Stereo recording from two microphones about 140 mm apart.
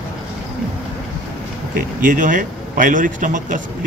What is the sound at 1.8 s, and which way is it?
A man's voice, 80° right.